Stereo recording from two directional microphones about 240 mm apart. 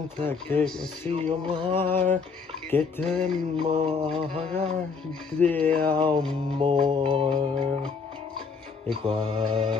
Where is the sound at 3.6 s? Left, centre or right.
Right.